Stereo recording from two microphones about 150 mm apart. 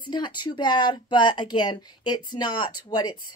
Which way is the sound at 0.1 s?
30° left (ahead or behind).